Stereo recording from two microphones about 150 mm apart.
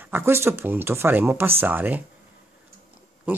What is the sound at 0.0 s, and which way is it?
Speech, 15° right (ahead or behind).